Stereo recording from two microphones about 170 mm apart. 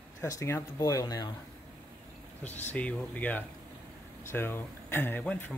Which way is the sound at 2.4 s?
10° left (ahead or behind).